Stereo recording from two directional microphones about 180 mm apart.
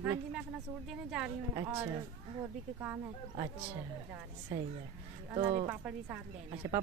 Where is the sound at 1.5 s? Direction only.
15° right (ahead or behind).